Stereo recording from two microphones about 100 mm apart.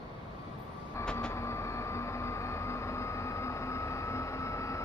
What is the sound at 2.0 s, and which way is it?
Vehicle, 25° left (ahead or behind).